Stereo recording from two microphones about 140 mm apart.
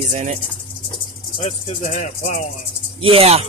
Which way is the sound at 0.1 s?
60° right (ahead or behind).